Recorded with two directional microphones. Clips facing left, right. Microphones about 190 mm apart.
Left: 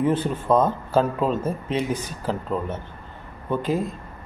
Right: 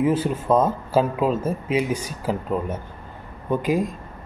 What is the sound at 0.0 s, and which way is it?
Speech, 5° right (ahead or behind).